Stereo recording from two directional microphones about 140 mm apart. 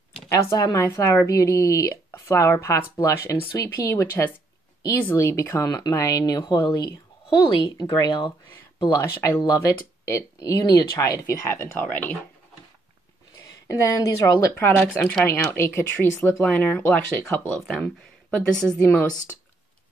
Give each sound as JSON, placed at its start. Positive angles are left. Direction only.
{"t": 0.3, "sound": "speech", "side_deg": 25}
{"t": 7.7, "sound": "speech", "side_deg": 30}
{"t": 8.9, "sound": "speech", "side_deg": 20}
{"t": 13.7, "sound": "speech", "side_deg": 20}